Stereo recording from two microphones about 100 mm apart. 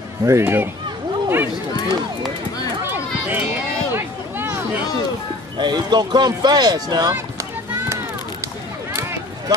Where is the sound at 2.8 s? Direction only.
25° right (ahead or behind).